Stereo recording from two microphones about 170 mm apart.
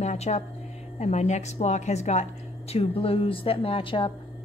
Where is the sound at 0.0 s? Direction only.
40° left (ahead or behind).